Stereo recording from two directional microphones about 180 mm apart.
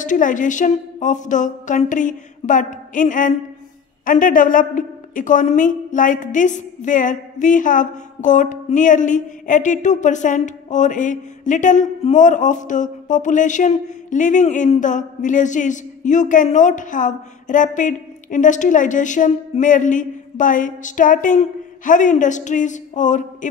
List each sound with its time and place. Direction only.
0.0 s a woman's voice: 45° left (ahead or behind)